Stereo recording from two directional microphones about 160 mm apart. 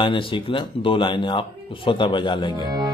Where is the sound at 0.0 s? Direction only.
30° left (ahead or behind).